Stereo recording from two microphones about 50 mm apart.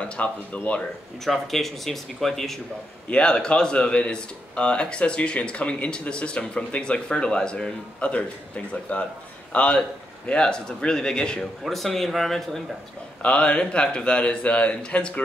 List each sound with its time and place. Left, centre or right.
0.0 s speech: left
1.2 s speech: centre
3.1 s a man's voice: centre
11.6 s speech: centre
13.2 s speech: left